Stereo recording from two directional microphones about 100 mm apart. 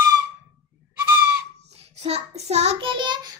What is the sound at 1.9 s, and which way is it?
A child's voice, 90° right.